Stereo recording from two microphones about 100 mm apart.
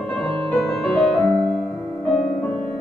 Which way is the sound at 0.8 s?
Centre (ahead or behind).